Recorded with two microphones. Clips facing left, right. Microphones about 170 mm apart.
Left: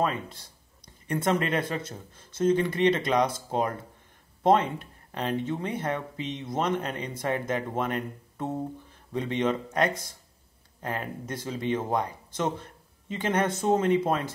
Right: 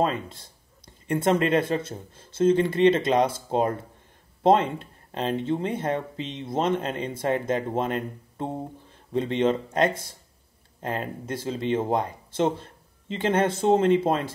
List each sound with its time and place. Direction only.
0.3 s speech: 25° right (ahead or behind)